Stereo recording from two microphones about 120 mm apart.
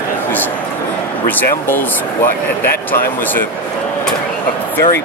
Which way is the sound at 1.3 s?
15° left (ahead or behind).